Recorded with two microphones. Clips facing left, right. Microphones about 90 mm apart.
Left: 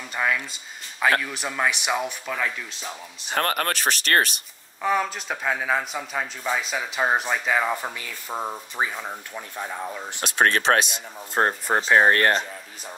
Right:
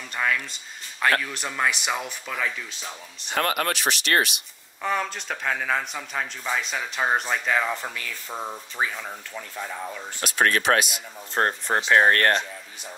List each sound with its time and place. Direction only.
0.1 s speech: 5° left (ahead or behind)
3.3 s speech: 40° left (ahead or behind)
4.8 s speech: 5° left (ahead or behind); by 11.0 s 30° left (ahead or behind)
11.3 s speech: 10° left (ahead or behind)